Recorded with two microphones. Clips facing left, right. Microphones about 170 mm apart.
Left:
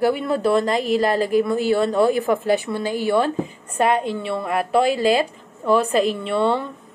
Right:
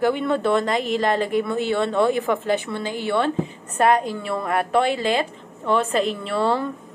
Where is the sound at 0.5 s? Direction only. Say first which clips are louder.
Left 2 dB; 35° left (ahead or behind).